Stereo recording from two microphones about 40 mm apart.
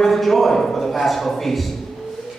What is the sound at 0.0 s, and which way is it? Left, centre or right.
A man's voice, centre.